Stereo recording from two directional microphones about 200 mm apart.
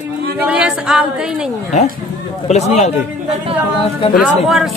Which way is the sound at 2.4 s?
35° left (ahead or behind).